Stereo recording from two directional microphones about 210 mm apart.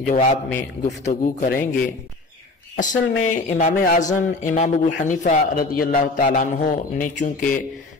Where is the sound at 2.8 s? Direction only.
40° left (ahead or behind).